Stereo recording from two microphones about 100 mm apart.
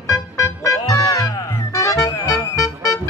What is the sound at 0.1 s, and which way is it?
Music, 30° left (ahead or behind).